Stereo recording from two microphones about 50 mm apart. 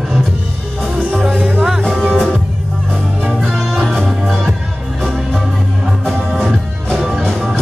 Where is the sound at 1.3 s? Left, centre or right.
Right.